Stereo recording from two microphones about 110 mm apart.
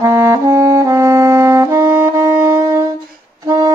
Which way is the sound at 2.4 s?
25° right (ahead or behind).